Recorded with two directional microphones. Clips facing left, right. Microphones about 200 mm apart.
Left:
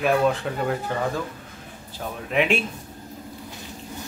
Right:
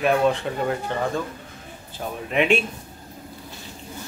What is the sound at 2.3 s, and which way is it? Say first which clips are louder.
Speech: right 2 dB; centre (ahead or behind).